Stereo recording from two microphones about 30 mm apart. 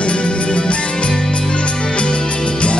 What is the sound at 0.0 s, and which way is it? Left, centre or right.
Music, left.